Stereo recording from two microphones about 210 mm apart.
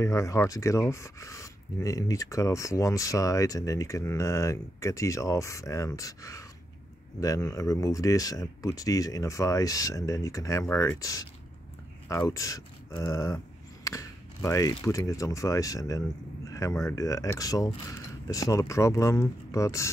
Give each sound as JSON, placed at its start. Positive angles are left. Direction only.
{"t": 0.0, "sound": "speech", "side_deg": 15}
{"t": 13.8, "sound": "a sound", "side_deg": 15}
{"t": 14.9, "sound": "speech", "side_deg": 15}